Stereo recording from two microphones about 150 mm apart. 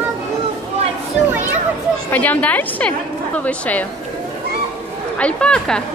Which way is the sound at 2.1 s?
10° left (ahead or behind).